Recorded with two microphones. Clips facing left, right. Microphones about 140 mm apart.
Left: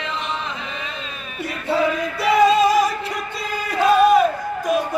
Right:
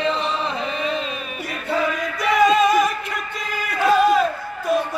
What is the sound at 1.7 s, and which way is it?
Music, 30° left (ahead or behind).